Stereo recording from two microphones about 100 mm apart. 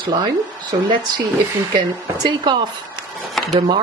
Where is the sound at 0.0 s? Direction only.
50° right (ahead or behind).